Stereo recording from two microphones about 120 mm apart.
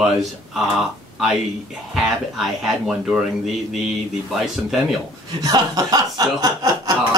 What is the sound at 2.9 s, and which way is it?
Speech, 5° right (ahead or behind).